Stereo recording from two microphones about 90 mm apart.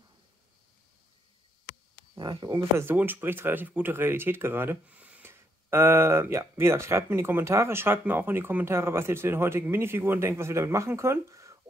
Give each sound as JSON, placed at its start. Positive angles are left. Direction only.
{"t": 2.1, "sound": "speech", "side_deg": -55}
{"t": 2.8, "sound": "speech", "side_deg": -25}
{"t": 5.3, "sound": "speech", "side_deg": -30}